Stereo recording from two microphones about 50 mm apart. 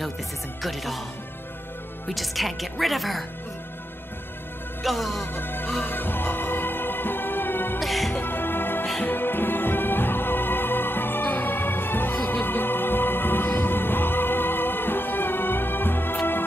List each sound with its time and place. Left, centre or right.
0.6 s a woman's voice: centre
2.0 s a woman's voice: centre
4.8 s a woman's voice: centre
5.2 s music: left
7.8 s music: centre
8.2 s music: left